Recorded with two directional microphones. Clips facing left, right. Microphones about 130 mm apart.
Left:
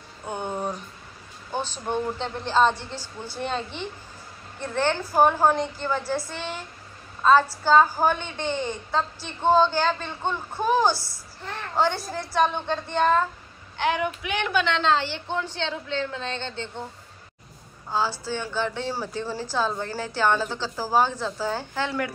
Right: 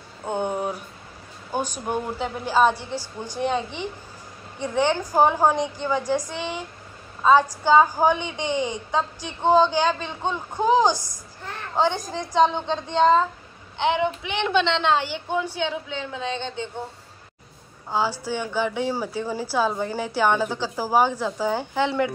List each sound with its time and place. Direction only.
0.2 s a sound: 20° right (ahead or behind)
1.5 s a woman's voice: 10° right (ahead or behind)
17.8 s a woman's voice: 15° right (ahead or behind)